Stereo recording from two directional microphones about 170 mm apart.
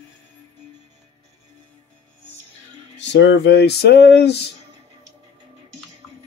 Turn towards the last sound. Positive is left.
turn(degrees=75)  # may be behind; listen again after turning